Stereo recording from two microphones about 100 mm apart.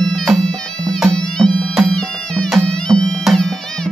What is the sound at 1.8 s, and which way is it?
Music, 5° left (ahead or behind).